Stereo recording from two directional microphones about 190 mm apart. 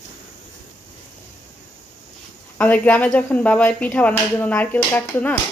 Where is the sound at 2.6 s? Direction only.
10° left (ahead or behind).